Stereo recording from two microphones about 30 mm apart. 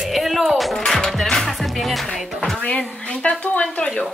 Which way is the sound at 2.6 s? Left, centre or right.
Left.